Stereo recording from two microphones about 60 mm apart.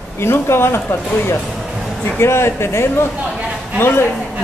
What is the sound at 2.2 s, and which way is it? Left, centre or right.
A man's voice, left.